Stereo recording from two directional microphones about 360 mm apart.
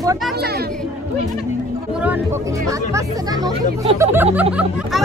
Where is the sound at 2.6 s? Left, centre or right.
Centre.